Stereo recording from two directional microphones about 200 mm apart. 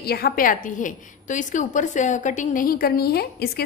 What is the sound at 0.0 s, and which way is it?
A woman's voice, 50° left (ahead or behind).